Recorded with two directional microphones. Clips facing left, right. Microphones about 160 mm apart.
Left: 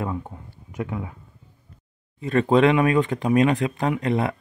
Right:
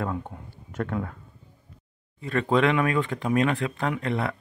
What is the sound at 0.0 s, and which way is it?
Speech, 5° left (ahead or behind).